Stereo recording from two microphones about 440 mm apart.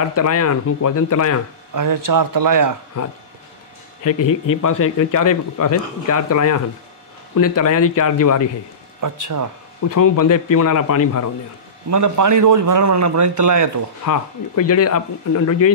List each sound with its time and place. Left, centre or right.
0.1 s speech: left
1.7 s speech: right
4.5 s speech: left
5.2 s speech: left
9.0 s speech: right
9.8 s speech: left
11.9 s a man's voice: right
14.0 s speech: left